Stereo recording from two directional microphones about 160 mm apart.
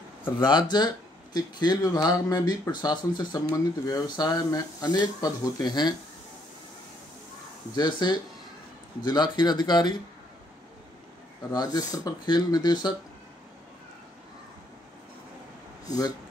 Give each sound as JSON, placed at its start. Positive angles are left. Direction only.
{"t": 0.2, "sound": "speech", "side_deg": 30}
{"t": 7.7, "sound": "speech", "side_deg": 25}
{"t": 11.5, "sound": "speech", "side_deg": 25}